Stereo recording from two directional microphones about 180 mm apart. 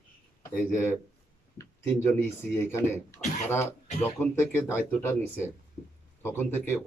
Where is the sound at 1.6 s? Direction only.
15° left (ahead or behind).